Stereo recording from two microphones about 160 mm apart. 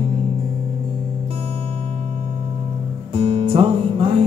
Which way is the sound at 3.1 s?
35° right (ahead or behind).